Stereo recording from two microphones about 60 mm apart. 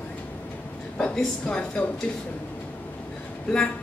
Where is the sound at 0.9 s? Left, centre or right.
Centre.